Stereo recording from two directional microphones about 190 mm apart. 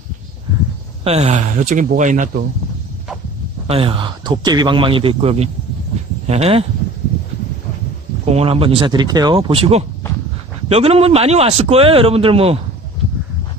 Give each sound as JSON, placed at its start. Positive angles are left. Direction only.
{"t": 1.0, "sound": "a man's voice", "side_deg": -35}
{"t": 3.6, "sound": "a man's voice", "side_deg": -30}
{"t": 8.3, "sound": "a man's voice", "side_deg": -30}